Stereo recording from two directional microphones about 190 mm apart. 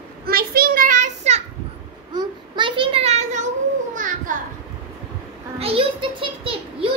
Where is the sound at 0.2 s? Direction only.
50° right (ahead or behind).